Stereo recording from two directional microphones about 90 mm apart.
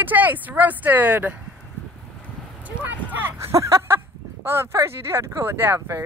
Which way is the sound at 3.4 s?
35° right (ahead or behind).